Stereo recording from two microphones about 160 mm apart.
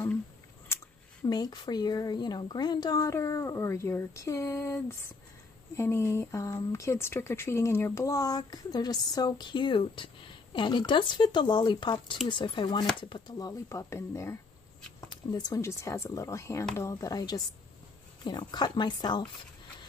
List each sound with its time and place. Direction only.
1.2 s speech: 25° left (ahead or behind)